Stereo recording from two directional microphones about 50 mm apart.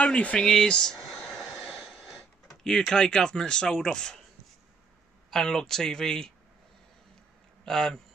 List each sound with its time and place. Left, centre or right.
0.0 s speech: left
0.4 s speech: centre
0.9 s a sound: centre
2.9 s speech: centre
5.3 s speech: centre
7.6 s speech: centre